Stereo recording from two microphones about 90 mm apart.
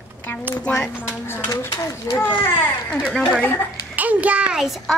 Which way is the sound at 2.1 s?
40° left (ahead or behind).